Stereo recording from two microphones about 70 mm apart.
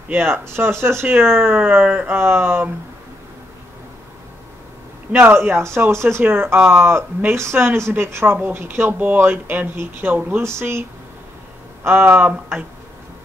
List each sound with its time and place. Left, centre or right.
0.1 s speech: right
5.1 s speech: right
10.4 s speech: right